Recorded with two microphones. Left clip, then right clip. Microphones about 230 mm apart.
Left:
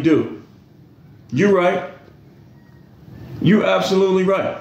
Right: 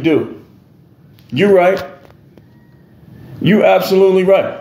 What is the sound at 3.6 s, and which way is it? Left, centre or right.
Speech, left.